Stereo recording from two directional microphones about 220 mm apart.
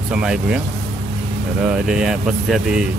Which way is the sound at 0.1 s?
5° right (ahead or behind).